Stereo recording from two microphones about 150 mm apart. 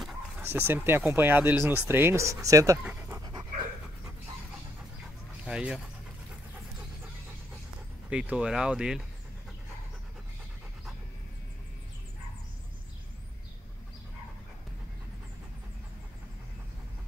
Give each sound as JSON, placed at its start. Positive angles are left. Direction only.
{"t": 0.4, "sound": "speech", "side_deg": -15}
{"t": 2.8, "sound": "pant", "side_deg": -5}
{"t": 5.4, "sound": "speech", "side_deg": -5}
{"t": 8.1, "sound": "speech", "side_deg": -5}